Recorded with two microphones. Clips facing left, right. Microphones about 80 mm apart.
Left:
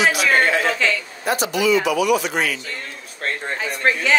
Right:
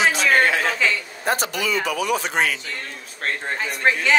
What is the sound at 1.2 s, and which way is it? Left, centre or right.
Speech, right.